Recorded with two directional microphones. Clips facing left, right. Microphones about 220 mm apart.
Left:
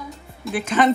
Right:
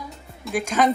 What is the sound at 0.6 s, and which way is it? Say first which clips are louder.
Speech: left 2 dB; 10° right (ahead or behind).